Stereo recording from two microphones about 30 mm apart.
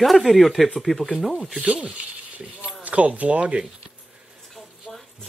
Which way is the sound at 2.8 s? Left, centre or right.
Right.